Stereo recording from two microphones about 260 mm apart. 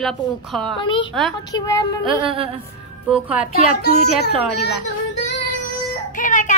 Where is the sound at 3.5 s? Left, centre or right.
Left.